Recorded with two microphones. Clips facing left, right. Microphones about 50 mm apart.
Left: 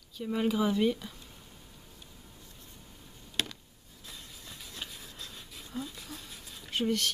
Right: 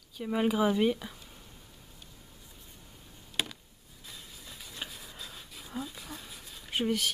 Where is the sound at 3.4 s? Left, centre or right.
Centre.